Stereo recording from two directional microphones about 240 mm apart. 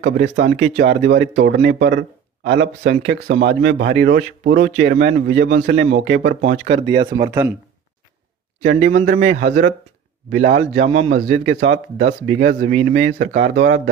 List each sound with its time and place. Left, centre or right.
0.0 s a man's voice: right
6.9 s speech: centre
8.5 s a man's voice: right